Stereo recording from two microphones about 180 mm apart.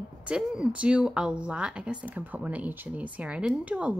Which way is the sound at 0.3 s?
5° right (ahead or behind).